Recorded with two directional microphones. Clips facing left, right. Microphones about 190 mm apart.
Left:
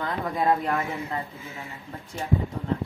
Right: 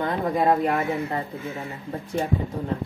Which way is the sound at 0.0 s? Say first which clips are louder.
Right 4 dB; 20° right (ahead or behind).